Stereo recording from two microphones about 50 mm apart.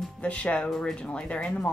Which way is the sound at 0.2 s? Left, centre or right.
Left.